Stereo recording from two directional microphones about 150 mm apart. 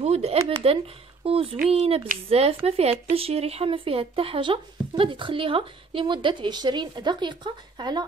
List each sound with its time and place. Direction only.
0.0 s speech: 45° right (ahead or behind)